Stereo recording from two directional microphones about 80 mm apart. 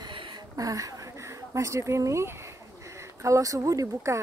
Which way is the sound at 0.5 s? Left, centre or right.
Right.